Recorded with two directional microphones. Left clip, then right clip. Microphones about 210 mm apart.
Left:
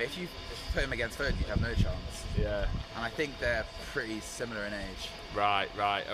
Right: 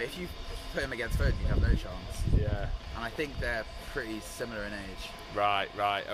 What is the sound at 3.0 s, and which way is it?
Speech, 20° left (ahead or behind).